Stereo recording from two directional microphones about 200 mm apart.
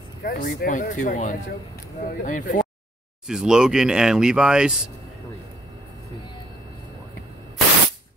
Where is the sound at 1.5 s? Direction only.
50° left (ahead or behind).